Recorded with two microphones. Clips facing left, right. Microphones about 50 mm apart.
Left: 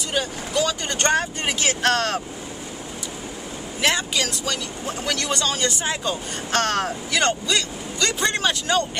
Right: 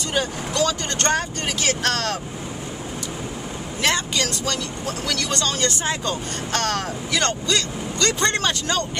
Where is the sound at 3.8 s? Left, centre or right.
Centre.